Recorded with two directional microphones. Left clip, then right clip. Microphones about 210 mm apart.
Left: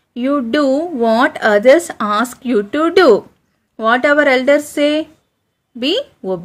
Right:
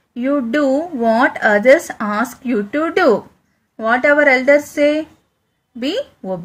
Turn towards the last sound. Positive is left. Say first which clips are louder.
# left 4 dB
turn(degrees=40)  # may be behind; listen again after turning